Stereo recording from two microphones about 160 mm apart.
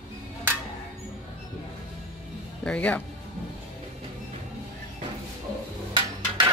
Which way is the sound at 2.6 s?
10° left (ahead or behind).